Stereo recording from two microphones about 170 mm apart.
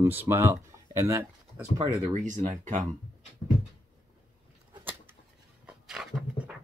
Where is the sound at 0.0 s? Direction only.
15° right (ahead or behind).